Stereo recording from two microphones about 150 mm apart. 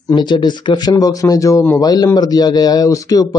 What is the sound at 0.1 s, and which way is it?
A man's voice, 30° left (ahead or behind).